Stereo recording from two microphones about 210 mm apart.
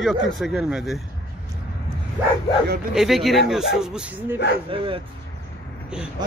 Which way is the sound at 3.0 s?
Centre (ahead or behind).